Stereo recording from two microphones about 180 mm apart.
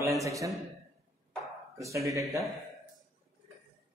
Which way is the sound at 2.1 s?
15° right (ahead or behind).